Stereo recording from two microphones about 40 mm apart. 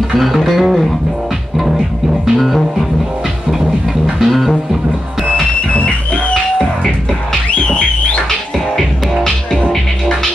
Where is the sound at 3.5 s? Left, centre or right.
Centre.